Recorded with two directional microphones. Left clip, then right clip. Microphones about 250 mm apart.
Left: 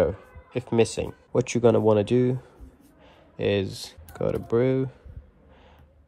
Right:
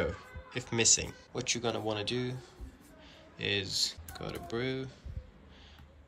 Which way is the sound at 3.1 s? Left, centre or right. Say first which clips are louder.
Left 9 dB; centre.